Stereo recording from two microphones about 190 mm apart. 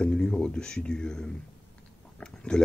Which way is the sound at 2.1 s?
5° left (ahead or behind).